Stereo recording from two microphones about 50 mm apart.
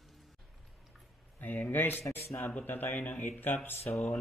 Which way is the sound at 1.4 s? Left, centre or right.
Left.